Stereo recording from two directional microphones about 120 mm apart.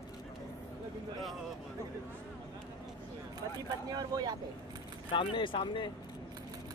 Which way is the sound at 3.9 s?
35° right (ahead or behind).